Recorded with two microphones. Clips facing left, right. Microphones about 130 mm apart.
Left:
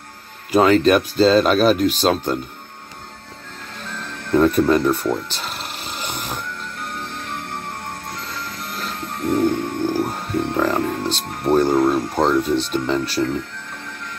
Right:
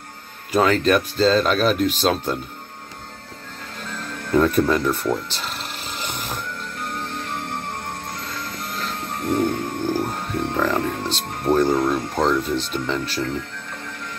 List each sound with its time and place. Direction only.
0.5 s speech: 5° left (ahead or behind)
4.3 s a sound: centre (ahead or behind)
8.7 s music: centre (ahead or behind)